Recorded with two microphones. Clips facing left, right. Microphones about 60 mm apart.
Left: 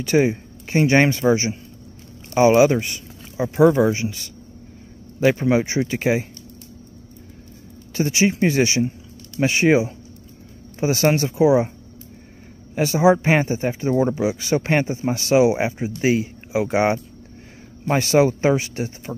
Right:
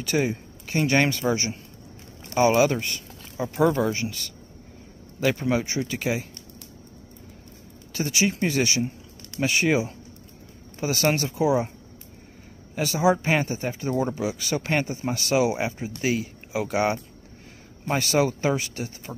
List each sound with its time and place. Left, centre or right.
0.0 s a man's voice: left
7.9 s speech: left
12.7 s speech: left